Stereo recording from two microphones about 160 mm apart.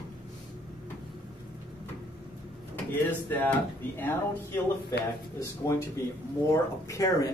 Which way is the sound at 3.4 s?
10° left (ahead or behind).